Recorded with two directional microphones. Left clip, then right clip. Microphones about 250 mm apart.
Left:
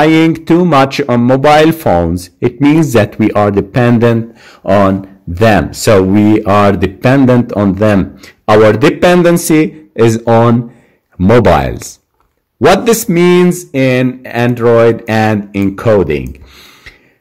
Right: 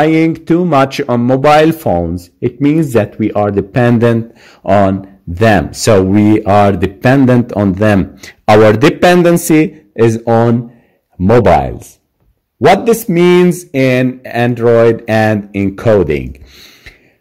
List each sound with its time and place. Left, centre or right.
0.0 s a man's voice: centre